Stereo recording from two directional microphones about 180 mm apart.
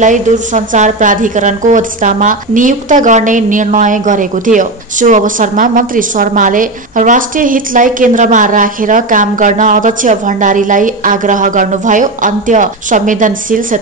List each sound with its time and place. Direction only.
0.0 s a woman's voice: 45° right (ahead or behind)